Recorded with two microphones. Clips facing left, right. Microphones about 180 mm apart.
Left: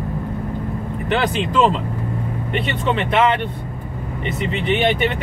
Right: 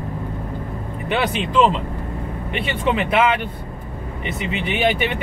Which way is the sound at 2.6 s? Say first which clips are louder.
Right 2 dB; 5° right (ahead or behind).